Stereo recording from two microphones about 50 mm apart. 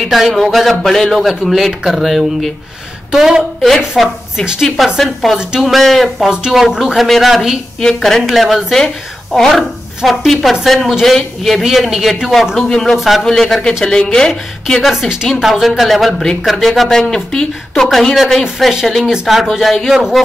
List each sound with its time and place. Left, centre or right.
0.0 s speech: centre
3.1 s a woman's voice: centre
4.0 s speech: centre
6.3 s speech: centre
6.8 s speech: centre
8.7 s speech: centre
12.6 s a woman's voice: centre
12.9 s speech: centre
13.2 s a woman's voice: centre
15.2 s a woman's voice: centre
17.8 s speech: centre